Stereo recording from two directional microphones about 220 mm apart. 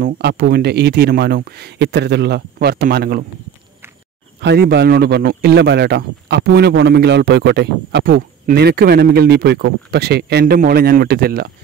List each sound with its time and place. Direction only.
0.0 s a man's voice: 45° right (ahead or behind)
4.4 s a man's voice: 50° right (ahead or behind)